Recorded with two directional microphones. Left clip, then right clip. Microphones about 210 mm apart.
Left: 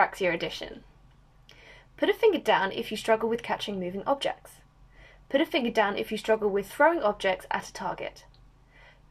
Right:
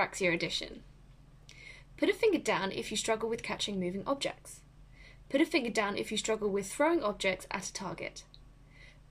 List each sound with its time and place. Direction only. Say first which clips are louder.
0.0 s speech: left 5 dB; 20° right (ahead or behind)